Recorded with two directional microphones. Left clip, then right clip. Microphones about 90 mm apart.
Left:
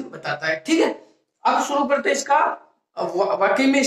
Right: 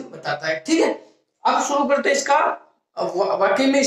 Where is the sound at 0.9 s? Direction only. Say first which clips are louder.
Right 3 dB; 25° right (ahead or behind).